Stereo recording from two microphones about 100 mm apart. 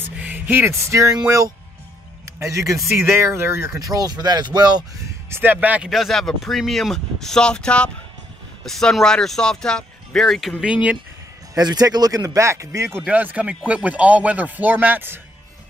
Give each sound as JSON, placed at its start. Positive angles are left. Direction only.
{"t": 0.1, "sound": "a sound", "side_deg": -15}
{"t": 2.4, "sound": "speech", "side_deg": -30}
{"t": 3.8, "sound": "speech", "side_deg": -40}
{"t": 5.3, "sound": "speech", "side_deg": -20}
{"t": 5.9, "sound": "speech", "side_deg": 0}
{"t": 10.6, "sound": "speech", "side_deg": -15}
{"t": 11.5, "sound": "speech", "side_deg": -40}
{"t": 13.1, "sound": "speech", "side_deg": -15}